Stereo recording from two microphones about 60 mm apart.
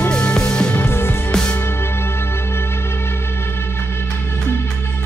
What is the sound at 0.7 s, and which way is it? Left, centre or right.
Music, left.